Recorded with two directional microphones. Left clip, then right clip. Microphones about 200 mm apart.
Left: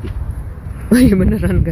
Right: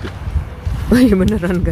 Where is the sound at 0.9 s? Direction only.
5° left (ahead or behind).